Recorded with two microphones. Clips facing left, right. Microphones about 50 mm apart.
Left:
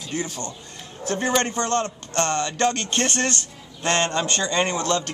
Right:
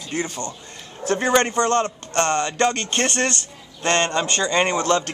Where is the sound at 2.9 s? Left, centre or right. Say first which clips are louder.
Right 2 dB; centre.